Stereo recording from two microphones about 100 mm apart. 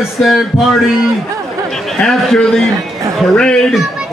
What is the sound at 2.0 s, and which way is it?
A man's voice, 10° left (ahead or behind).